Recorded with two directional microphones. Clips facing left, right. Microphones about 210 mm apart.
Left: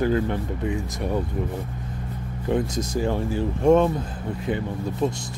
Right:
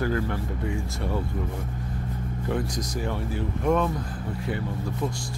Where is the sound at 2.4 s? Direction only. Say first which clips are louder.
Left 5 dB; 25° left (ahead or behind).